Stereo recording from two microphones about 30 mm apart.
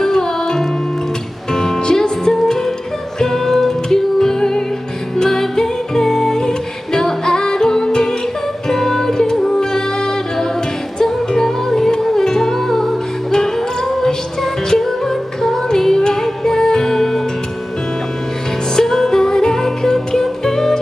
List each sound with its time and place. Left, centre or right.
0.0 s music: centre
18.8 s music: centre